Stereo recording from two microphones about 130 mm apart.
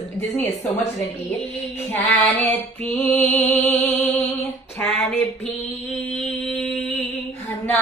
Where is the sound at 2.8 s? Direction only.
15° left (ahead or behind).